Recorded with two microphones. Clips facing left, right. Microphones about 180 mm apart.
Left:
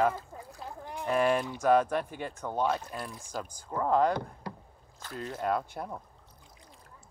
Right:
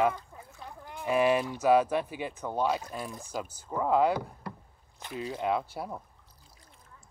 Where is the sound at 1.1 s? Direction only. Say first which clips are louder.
Right 2 dB; 5° right (ahead or behind).